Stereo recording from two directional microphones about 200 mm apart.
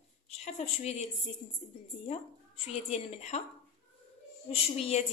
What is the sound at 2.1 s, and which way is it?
A woman's voice, 30° left (ahead or behind).